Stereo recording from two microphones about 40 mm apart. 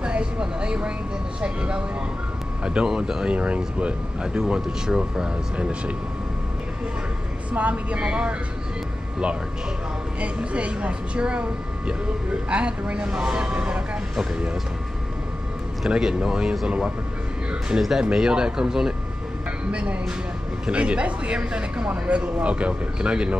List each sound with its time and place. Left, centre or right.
0.0 s a sound: right
1.4 s speech: right
4.4 s speech: centre
7.5 s a woman's voice: right
10.2 s speech: right
16.0 s speech: centre
17.7 s speech: centre
19.7 s speech: right